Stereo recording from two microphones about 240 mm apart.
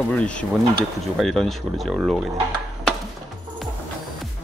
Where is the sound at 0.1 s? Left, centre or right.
Centre.